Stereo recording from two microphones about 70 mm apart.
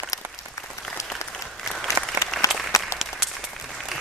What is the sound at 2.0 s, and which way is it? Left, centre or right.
Applause, right.